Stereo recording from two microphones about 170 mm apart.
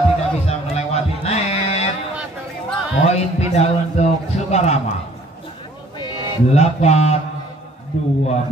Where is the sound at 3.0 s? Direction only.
40° left (ahead or behind).